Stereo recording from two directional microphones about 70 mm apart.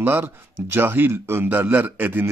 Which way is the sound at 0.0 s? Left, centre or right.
Right.